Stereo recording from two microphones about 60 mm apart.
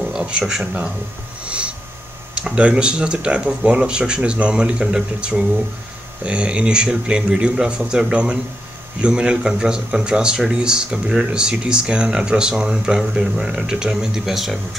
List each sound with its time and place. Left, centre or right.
0.1 s speech: centre
1.4 s snort: centre
2.3 s a man's voice: centre